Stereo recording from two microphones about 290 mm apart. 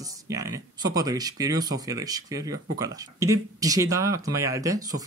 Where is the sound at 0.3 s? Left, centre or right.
Centre.